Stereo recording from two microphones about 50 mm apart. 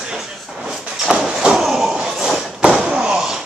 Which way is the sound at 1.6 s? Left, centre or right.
Centre.